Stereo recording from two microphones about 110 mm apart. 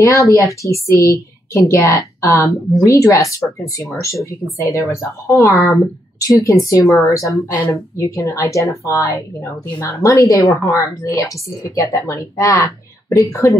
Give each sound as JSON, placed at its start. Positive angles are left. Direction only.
{"t": 0.0, "sound": "speech", "side_deg": 30}
{"t": 4.6, "sound": "speech", "side_deg": 30}